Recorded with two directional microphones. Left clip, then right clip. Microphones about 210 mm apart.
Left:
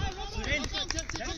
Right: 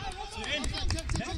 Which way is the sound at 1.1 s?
50° right (ahead or behind).